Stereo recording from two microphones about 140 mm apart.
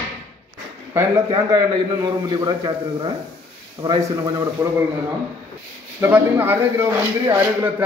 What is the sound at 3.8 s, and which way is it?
Speech, 45° right (ahead or behind).